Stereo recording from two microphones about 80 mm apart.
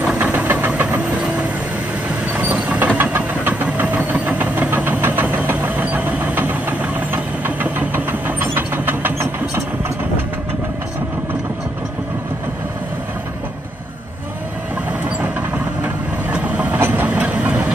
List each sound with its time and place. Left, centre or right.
0.2 s vehicle: right
2.3 s vehicle: centre
15.5 s vehicle: centre